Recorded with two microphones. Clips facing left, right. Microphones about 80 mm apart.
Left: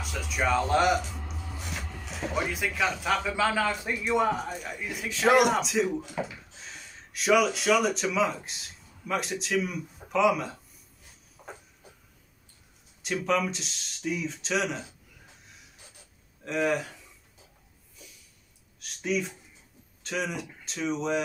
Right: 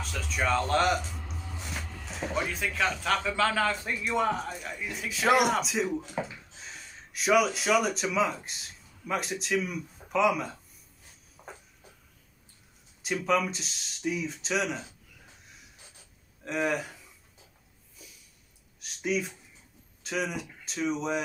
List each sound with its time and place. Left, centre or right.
0.0 s speech: centre
1.1 s music: centre
1.4 s music: centre
2.4 s a man's voice: centre
6.2 s speech: right
6.5 s speech: centre
13.0 s speech: centre
16.4 s speech: centre
19.0 s speech: centre